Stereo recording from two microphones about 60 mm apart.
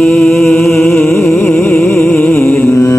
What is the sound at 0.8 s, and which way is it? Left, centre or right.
Music, left.